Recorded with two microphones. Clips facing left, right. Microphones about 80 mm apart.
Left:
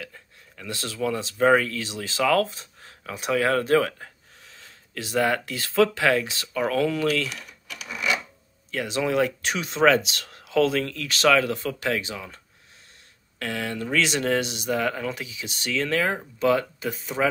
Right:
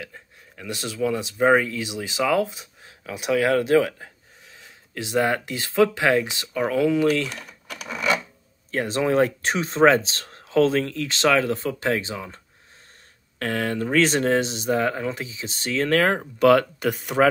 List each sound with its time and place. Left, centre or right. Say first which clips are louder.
0.0 s speech: right 2 dB; centre
7.1 s a sound: right 3 dB; right
8.7 s speech: right 3 dB; right
13.4 s speech: right 4 dB; right
15.9 s speech: right 8 dB; right